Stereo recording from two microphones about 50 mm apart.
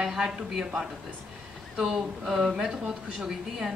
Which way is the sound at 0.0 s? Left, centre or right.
Centre.